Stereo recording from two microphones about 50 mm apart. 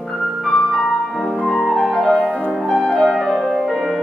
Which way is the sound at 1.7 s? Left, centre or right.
Centre.